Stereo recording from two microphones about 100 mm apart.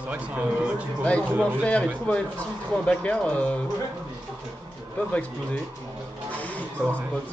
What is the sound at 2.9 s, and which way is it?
Speech, 10° left (ahead or behind).